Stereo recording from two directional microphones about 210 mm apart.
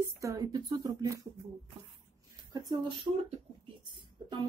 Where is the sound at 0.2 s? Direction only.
15° right (ahead or behind).